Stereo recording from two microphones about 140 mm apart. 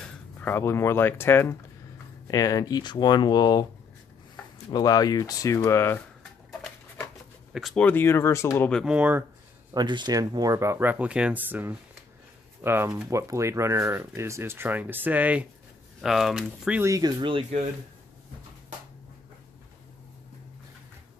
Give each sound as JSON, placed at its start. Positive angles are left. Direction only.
{"t": 0.0, "sound": "speech", "side_deg": 15}
{"t": 4.6, "sound": "speech", "side_deg": 25}
{"t": 7.5, "sound": "speech", "side_deg": 0}
{"t": 7.8, "sound": "speech", "side_deg": 15}
{"t": 8.8, "sound": "speech", "side_deg": -10}
{"t": 9.8, "sound": "speech", "side_deg": -30}
{"t": 16.4, "sound": "speech", "side_deg": -10}
{"t": 16.9, "sound": "speech", "side_deg": -30}